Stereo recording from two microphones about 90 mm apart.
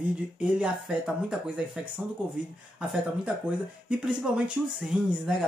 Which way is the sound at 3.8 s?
5° right (ahead or behind).